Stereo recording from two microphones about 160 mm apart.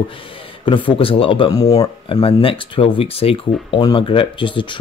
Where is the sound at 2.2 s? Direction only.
35° left (ahead or behind).